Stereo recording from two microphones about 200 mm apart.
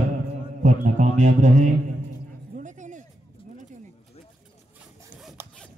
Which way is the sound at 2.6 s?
40° right (ahead or behind).